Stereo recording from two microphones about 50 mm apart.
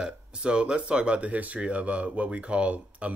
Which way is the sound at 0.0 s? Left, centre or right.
Centre.